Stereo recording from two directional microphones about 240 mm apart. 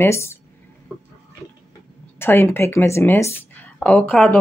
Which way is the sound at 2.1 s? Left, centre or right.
Centre.